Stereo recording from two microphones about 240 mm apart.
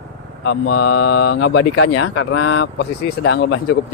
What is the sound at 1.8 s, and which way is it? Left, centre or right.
Speech, left.